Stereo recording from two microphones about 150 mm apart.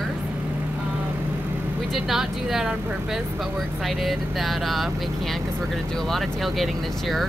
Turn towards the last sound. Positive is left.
turn(degrees=0)  # may be behind; listen again after turning